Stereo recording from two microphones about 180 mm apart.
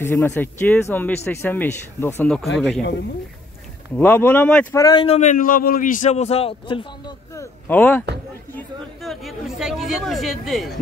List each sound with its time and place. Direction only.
0.0 s speech: 10° left (ahead or behind)
3.9 s speech: 10° left (ahead or behind)
4.7 s a man's voice: 20° left (ahead or behind)
5.0 s a man's voice: 40° left (ahead or behind)
7.3 s a woman's voice: 10° left (ahead or behind)